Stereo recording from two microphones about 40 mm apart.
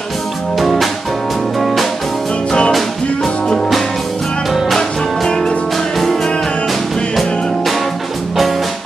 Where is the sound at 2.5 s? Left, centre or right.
Left.